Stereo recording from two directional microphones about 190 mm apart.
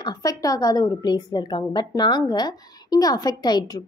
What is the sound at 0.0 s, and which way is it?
A woman's voice, 20° left (ahead or behind).